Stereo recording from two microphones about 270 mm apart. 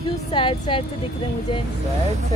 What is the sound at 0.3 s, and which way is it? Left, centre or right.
Speech, centre.